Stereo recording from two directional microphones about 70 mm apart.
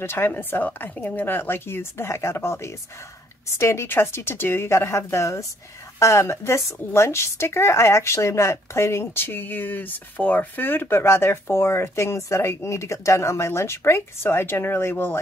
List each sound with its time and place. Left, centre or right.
0.0 s a woman's voice: left